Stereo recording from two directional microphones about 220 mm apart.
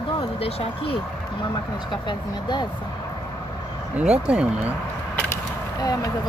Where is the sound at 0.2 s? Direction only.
25° left (ahead or behind).